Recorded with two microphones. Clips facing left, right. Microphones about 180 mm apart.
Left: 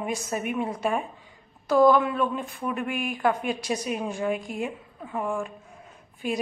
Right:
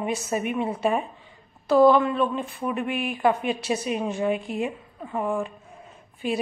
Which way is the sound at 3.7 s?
5° right (ahead or behind).